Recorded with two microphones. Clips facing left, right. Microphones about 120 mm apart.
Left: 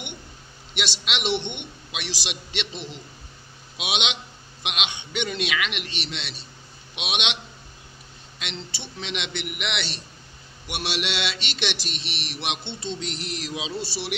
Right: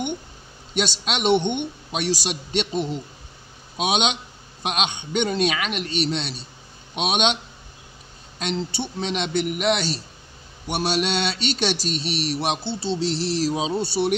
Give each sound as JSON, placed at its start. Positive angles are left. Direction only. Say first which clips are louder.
{"t": 0.7, "sound": "a man's voice", "louder": "right 5 dB", "side_deg": -45}
{"t": 8.4, "sound": "speech", "louder": "right 10 dB", "side_deg": -40}